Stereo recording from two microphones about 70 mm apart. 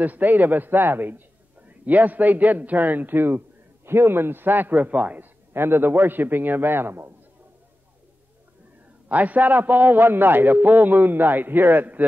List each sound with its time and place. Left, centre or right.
0.0 s a man's voice: right
9.1 s a man's voice: right